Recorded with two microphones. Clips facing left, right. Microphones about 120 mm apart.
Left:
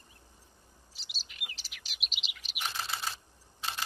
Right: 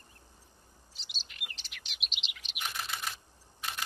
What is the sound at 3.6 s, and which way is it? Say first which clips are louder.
Camera: left 2 dB; 30° left (ahead or behind).